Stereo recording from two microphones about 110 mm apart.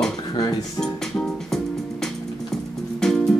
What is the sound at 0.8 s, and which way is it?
Music, 5° left (ahead or behind).